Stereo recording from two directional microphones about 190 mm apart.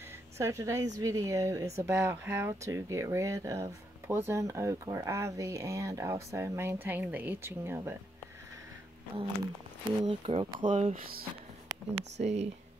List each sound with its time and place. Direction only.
0.4 s speech: 15° right (ahead or behind)
10.0 s speech: 30° right (ahead or behind)
12.2 s speech: 35° right (ahead or behind)